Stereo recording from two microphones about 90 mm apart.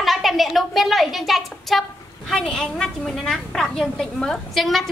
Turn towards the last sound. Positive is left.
turn(degrees=0)  # may be behind; listen again after turning